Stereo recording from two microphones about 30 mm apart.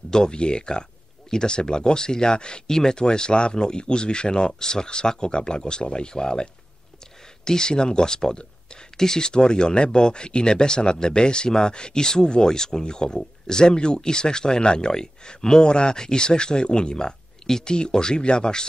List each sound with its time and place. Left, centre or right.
0.1 s speech: left